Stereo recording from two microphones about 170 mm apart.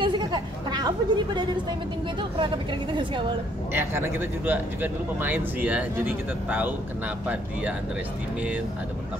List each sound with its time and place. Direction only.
0.0 s chatter: 25° right (ahead or behind)
2.3 s speech: 30° right (ahead or behind)
3.7 s speech: 15° right (ahead or behind)